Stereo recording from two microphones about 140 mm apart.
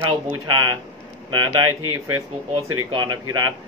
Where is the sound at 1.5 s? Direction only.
30° right (ahead or behind).